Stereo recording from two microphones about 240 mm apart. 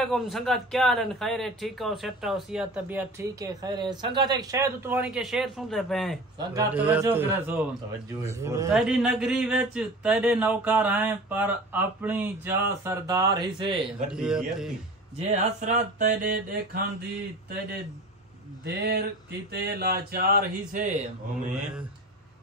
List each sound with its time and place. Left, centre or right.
0.0 s a man's voice: centre
6.3 s a man's voice: centre
14.0 s a man's voice: centre
15.1 s mantra: right
18.8 s a sound: right
19.5 s speech: right